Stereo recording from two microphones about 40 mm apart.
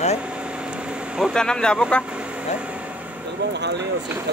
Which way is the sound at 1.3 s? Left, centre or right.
Left.